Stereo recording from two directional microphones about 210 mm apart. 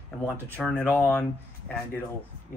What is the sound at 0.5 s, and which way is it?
Speech, 5° left (ahead or behind).